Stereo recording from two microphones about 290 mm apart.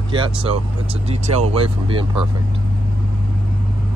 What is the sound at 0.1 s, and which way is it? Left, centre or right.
Speech, centre.